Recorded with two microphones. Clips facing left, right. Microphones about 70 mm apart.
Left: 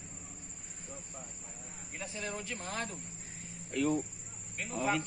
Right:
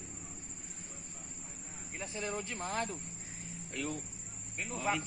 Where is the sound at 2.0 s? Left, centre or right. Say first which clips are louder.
Right 1 dB; right.